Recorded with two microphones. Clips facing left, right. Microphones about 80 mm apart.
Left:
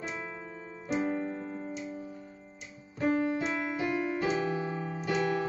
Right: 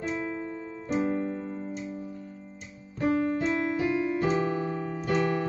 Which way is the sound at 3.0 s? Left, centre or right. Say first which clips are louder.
Right 2 dB; centre.